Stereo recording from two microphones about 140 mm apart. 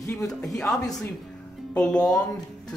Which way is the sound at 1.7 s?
5° left (ahead or behind).